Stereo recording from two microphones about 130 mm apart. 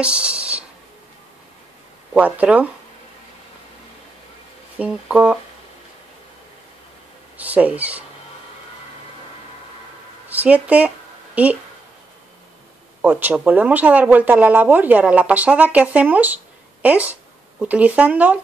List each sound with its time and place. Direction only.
0.0 s a sound: 10° right (ahead or behind)
2.1 s speech: 10° right (ahead or behind)
4.7 s speech: 10° right (ahead or behind)
7.3 s speech: 10° right (ahead or behind)
10.3 s speech: 10° right (ahead or behind)
13.0 s speech: 15° right (ahead or behind)